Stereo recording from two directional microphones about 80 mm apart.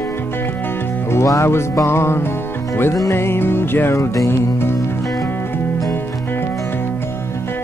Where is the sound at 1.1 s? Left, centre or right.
Left.